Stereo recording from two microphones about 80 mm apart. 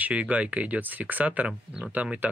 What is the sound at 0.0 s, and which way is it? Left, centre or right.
Speech, centre.